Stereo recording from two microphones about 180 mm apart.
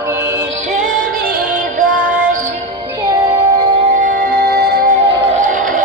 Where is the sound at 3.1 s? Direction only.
15° right (ahead or behind).